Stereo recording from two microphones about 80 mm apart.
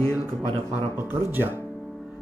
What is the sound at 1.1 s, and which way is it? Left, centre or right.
Music, right.